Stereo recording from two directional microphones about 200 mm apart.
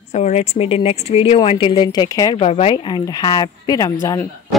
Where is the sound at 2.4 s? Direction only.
30° left (ahead or behind).